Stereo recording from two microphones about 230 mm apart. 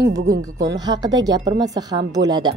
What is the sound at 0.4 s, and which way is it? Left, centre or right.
Speech, centre.